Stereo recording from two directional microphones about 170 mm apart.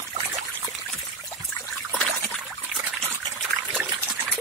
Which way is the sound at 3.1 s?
20° right (ahead or behind).